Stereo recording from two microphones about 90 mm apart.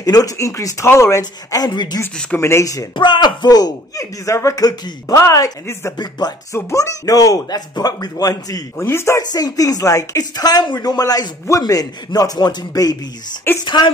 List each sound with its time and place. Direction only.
0.0 s speech: 45° left (ahead or behind)
2.4 s speech: 35° left (ahead or behind)
3.0 s speech: 60° left (ahead or behind)
4.0 s speech: 30° left (ahead or behind)
5.9 s speech: 50° left (ahead or behind)
6.5 s speech: 35° left (ahead or behind)
8.8 s speech: 30° left (ahead or behind)
9.2 s speech: 45° left (ahead or behind)
13.5 s speech: 25° left (ahead or behind)